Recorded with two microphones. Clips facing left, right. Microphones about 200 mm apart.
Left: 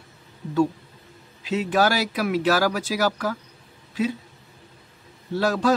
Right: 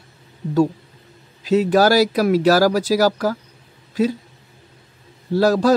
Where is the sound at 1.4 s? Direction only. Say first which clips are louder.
Right 7 dB; 40° right (ahead or behind).